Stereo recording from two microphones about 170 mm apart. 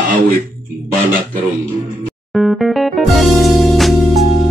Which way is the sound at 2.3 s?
Centre (ahead or behind).